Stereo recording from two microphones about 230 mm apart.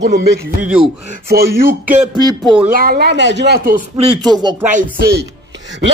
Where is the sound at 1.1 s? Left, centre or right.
Right.